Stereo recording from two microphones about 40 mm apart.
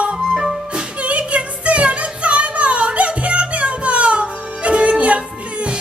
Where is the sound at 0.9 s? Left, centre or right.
Right.